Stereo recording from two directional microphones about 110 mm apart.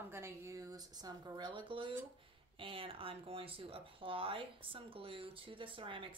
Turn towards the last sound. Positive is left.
turn(degrees=-50)  # may be behind; listen again after turning